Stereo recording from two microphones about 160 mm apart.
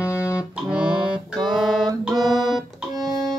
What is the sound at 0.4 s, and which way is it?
Music, 5° right (ahead or behind).